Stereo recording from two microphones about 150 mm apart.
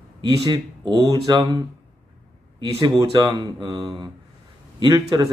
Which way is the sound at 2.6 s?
30° right (ahead or behind).